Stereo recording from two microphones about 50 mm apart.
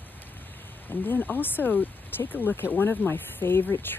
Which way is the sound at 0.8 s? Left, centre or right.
Left.